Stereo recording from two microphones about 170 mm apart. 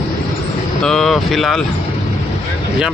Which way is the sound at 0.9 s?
Centre (ahead or behind).